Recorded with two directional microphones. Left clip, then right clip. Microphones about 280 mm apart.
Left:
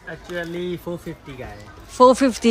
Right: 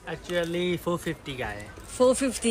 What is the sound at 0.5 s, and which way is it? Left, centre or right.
Speech, centre.